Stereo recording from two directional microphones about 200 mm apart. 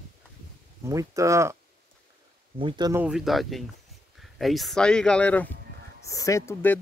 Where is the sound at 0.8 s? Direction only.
15° right (ahead or behind).